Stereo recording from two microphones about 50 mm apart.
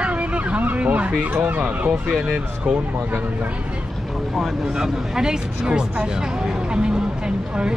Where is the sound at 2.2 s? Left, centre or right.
Centre.